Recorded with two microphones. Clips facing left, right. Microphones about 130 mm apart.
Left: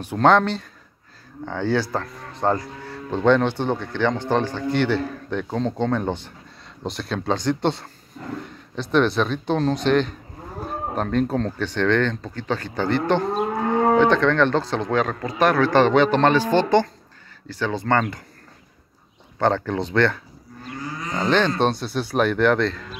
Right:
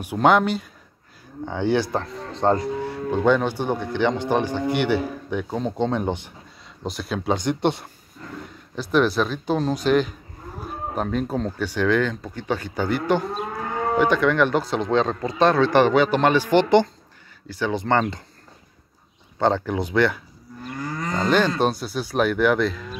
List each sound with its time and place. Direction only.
0.0 s speech: 10° right (ahead or behind)
6.8 s speech: 5° right (ahead or behind)
15.9 s speech: 5° right (ahead or behind); by 18.2 s 20° right (ahead or behind)
19.4 s speech: 15° right (ahead or behind)
21.3 s speech: 10° right (ahead or behind)